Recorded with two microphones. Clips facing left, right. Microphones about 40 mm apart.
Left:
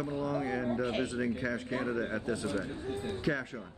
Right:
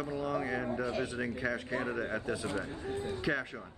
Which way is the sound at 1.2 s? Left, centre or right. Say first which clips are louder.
Left 1 dB; centre.